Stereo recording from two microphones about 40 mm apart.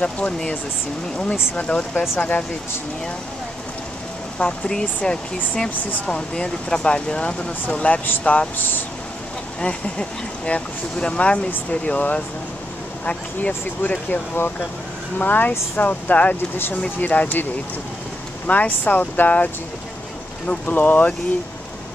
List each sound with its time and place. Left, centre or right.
0.0 s speech: left
4.4 s speech: left
8.5 s speech: left
9.6 s speech: left
13.5 s speech: left
15.1 s speech: left
18.5 s speech: left